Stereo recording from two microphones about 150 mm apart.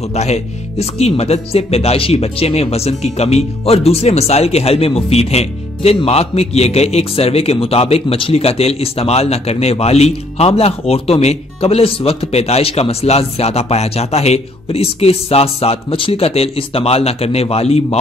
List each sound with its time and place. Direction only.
0.1 s a man's voice: 45° left (ahead or behind)